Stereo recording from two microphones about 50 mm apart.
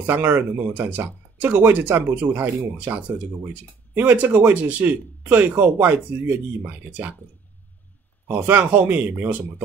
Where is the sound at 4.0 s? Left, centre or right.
Right.